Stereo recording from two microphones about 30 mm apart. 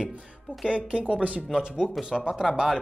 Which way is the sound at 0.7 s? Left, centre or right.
Right.